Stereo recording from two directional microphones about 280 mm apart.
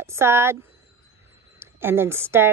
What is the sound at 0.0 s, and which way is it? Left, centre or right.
Speech, centre.